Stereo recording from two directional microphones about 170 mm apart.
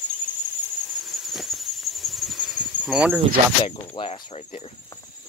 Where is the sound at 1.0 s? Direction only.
Centre (ahead or behind).